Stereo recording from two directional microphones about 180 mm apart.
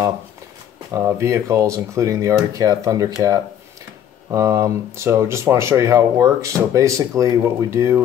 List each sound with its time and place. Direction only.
0.9 s speech: 15° right (ahead or behind)